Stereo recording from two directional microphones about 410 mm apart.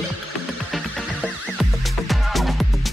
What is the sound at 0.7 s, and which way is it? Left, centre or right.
Music, centre.